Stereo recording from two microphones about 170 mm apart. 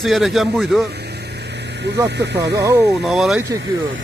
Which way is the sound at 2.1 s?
85° right.